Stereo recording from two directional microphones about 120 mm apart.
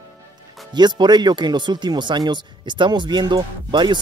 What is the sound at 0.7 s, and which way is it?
Speech, 40° right (ahead or behind).